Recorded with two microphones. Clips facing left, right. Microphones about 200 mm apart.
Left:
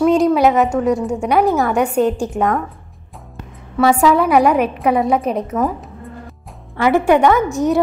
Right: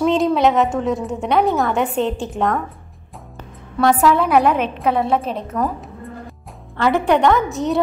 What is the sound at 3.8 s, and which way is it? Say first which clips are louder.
A woman's voice: left 2 dB; centre (ahead or behind).